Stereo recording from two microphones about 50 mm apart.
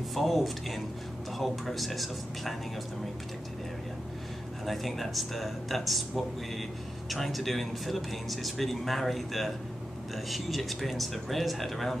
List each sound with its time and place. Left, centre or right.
0.1 s speech: centre
4.6 s speech: centre